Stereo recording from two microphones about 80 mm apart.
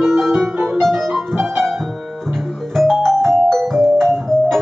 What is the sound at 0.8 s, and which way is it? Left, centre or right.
Music, centre.